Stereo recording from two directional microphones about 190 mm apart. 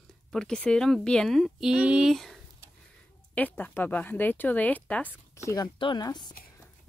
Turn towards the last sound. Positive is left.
turn(degrees=20)  # may be behind; listen again after turning